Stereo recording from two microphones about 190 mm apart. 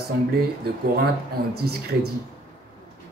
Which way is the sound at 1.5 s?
55° right (ahead or behind).